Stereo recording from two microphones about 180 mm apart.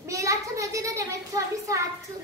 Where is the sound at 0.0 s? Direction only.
15° right (ahead or behind).